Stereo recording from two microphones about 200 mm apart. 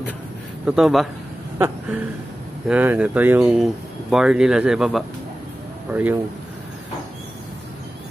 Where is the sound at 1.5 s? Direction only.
10° right (ahead or behind).